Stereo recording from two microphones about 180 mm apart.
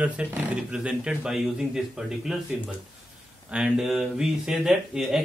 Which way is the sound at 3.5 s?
5° right (ahead or behind).